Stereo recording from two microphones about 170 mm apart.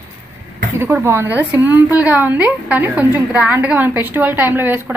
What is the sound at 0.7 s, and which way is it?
A woman's voice, 15° right (ahead or behind).